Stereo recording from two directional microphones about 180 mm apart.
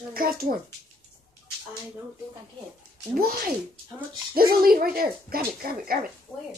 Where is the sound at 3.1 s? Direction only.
55° right (ahead or behind).